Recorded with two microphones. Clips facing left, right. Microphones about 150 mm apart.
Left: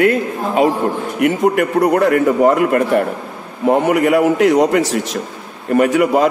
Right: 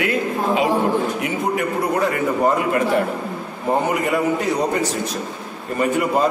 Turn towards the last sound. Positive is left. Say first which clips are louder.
# left 6 dB
turn(degrees=75)  # may be behind; listen again after turning